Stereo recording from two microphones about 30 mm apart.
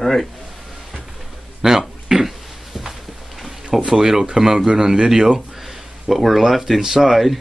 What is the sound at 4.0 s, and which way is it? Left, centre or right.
Speech, centre.